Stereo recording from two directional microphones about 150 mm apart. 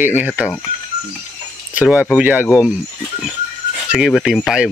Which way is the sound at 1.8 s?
10° right (ahead or behind).